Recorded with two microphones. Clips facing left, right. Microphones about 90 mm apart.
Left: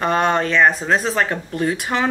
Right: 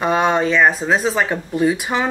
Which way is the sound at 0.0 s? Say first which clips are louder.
Right 1 dB; 5° right (ahead or behind).